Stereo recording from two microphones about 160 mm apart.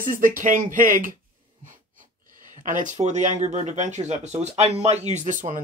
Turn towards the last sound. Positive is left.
turn(degrees=-50)  # may be behind; listen again after turning